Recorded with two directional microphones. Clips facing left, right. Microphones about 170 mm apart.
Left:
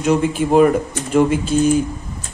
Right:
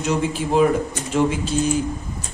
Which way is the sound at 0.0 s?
55° left (ahead or behind).